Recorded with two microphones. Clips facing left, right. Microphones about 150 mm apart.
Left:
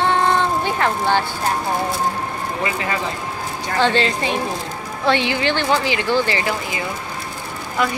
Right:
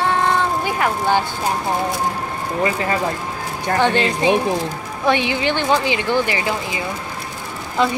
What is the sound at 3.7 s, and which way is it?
Speech, 15° right (ahead or behind).